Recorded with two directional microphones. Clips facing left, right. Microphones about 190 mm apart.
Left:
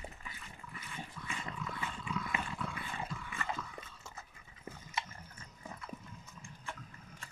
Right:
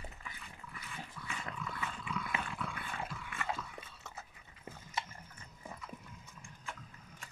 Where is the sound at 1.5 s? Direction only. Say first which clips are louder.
Even; centre (ahead or behind).